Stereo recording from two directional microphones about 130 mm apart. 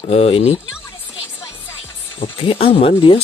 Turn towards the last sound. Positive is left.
turn(degrees=45)  # may be behind; listen again after turning